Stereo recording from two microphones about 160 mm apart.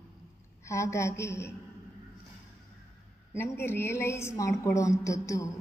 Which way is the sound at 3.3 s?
15° left (ahead or behind).